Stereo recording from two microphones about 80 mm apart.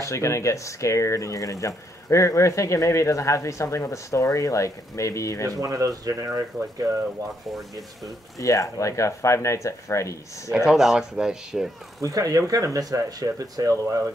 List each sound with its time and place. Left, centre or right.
0.0 s speech: left
5.5 s speech: right
8.4 s speech: left
10.7 s speech: centre
12.0 s speech: right